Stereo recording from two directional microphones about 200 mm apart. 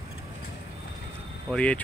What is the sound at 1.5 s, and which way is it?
Speech, 5° left (ahead or behind).